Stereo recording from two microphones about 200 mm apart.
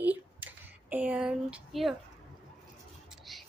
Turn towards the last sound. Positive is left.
turn(degrees=0)  # may be behind; listen again after turning